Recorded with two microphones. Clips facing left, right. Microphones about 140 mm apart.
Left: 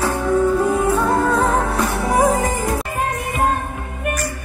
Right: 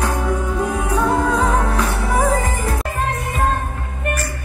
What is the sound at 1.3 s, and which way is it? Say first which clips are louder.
Music: left 1 dB; 5° left (ahead or behind).